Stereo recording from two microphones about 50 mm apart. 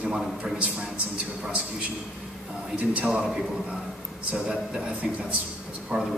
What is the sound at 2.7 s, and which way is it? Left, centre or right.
Speech, right.